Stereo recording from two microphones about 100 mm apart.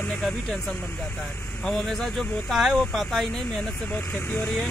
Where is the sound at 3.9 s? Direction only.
20° left (ahead or behind).